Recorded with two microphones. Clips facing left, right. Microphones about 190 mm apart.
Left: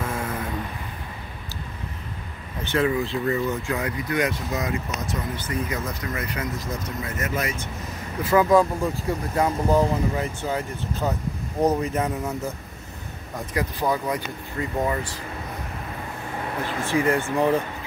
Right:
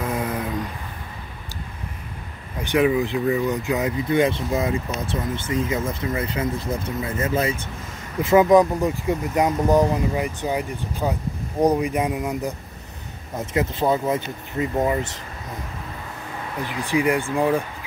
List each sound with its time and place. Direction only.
0.0 s a sound: 15° right (ahead or behind)
2.6 s speech: 15° right (ahead or behind)
16.6 s speech: 15° right (ahead or behind)